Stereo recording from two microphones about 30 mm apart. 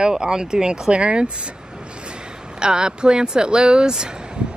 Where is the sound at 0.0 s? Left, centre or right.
Right.